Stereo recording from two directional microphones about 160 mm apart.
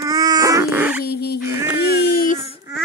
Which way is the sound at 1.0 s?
85° left.